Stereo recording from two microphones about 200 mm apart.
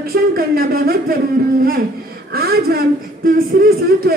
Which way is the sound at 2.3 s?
50° right (ahead or behind).